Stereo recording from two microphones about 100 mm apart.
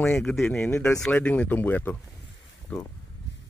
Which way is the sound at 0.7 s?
25° left (ahead or behind).